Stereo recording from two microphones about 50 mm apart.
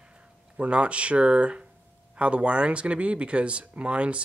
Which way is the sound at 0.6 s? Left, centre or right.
Right.